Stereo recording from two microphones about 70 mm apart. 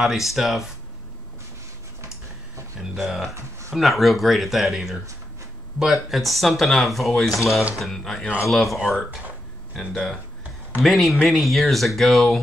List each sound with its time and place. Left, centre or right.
0.0 s speech: centre
2.8 s speech: centre
7.2 s speech: left
7.7 s speech: centre